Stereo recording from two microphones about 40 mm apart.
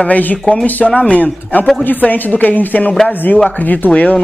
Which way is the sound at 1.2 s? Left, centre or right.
Left.